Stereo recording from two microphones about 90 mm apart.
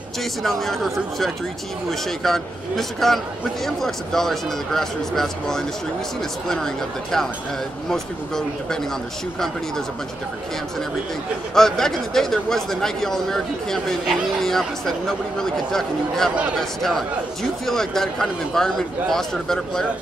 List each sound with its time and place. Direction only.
0.2 s a man's voice: centre (ahead or behind)
11.5 s a man's voice: 5° left (ahead or behind)